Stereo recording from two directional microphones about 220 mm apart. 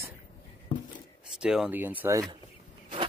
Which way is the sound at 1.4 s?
5° right (ahead or behind).